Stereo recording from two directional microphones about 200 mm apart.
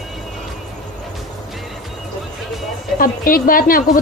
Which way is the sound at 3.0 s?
45° left (ahead or behind).